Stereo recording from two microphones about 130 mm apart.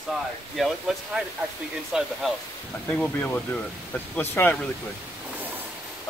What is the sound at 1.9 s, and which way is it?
Speech, centre (ahead or behind).